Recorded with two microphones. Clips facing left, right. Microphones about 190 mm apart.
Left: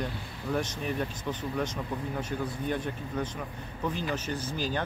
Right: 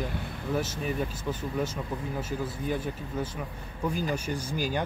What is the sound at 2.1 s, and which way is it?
A man's voice, 5° right (ahead or behind).